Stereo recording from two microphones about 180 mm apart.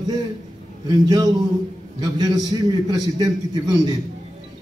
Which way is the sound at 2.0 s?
20° right (ahead or behind).